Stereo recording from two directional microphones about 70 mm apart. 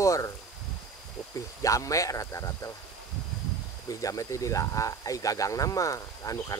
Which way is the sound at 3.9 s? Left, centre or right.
Left.